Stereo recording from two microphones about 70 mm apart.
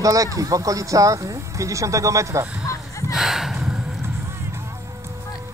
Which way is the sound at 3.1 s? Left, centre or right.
Centre.